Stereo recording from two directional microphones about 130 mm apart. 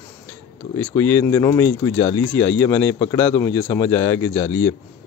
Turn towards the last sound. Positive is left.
turn(degrees=15)  # may be behind; listen again after turning